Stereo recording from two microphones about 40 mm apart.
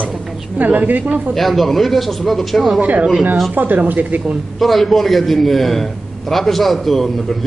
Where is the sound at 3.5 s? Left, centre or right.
Right.